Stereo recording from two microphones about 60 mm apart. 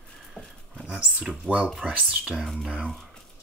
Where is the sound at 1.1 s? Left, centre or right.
Centre.